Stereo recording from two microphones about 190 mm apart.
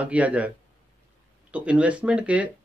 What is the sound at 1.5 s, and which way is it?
A man's voice, 5° right (ahead or behind).